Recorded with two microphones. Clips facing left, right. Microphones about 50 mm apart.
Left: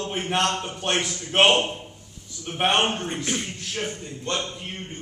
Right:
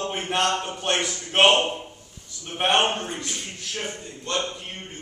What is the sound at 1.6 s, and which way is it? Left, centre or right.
Speech, right.